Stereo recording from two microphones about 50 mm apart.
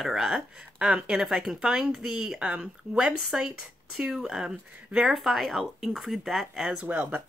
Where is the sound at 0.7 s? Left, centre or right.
Centre.